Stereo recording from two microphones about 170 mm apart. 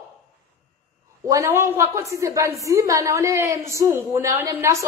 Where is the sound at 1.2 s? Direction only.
20° right (ahead or behind).